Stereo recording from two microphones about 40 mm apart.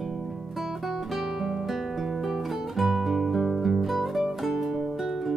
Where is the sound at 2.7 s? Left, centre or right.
Centre.